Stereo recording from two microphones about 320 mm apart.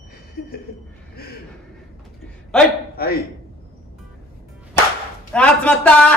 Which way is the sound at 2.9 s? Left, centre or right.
Left.